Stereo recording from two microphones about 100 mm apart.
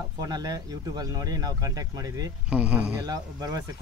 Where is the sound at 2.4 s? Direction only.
10° right (ahead or behind).